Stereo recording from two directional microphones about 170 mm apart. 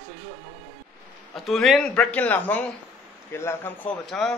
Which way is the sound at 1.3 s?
Centre (ahead or behind).